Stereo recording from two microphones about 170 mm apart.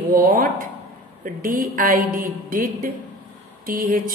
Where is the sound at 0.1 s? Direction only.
55° right (ahead or behind).